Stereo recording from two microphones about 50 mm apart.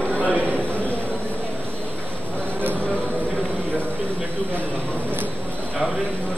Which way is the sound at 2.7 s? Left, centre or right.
Left.